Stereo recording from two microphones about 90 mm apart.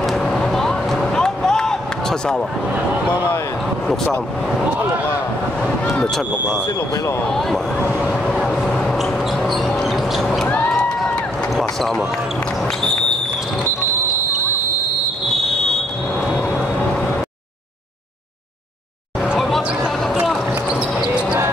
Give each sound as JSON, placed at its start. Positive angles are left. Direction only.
{"t": 0.0, "sound": "a sound", "side_deg": 5}
{"t": 3.8, "sound": "speech", "side_deg": 5}
{"t": 5.9, "sound": "speech", "side_deg": 5}
{"t": 7.2, "sound": "speech", "side_deg": 5}
{"t": 8.1, "sound": "vehicle", "side_deg": 5}
{"t": 8.5, "sound": "a sound", "side_deg": 10}
{"t": 10.4, "sound": "crowd", "side_deg": 15}
{"t": 10.7, "sound": "a sound", "side_deg": 5}
{"t": 15.2, "sound": "smoke detector", "side_deg": 5}
{"t": 16.3, "sound": "vehicle", "side_deg": 15}
{"t": 20.2, "sound": "basketball bounce", "side_deg": -5}